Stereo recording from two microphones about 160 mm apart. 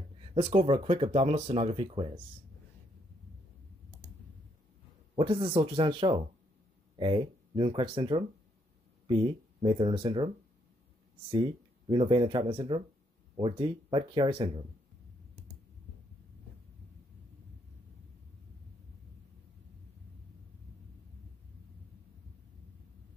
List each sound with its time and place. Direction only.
0.3 s speech: 40° right (ahead or behind)
5.1 s speech: 35° right (ahead or behind)